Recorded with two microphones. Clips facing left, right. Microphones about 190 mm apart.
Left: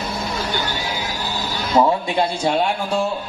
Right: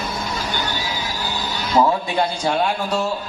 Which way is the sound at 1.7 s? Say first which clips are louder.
Left 1 dB; 25° left (ahead or behind).